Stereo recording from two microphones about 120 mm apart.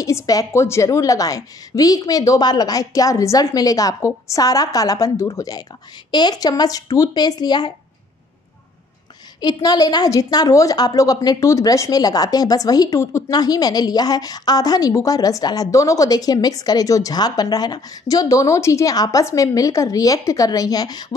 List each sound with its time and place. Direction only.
0.0 s a woman's voice: 30° left (ahead or behind)
9.4 s a woman's voice: 35° left (ahead or behind)